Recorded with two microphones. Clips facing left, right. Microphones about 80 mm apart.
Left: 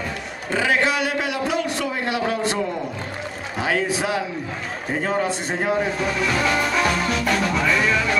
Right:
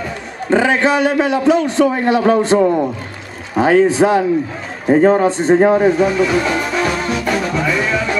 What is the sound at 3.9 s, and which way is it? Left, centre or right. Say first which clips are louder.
A man's voice: right 11 dB; right.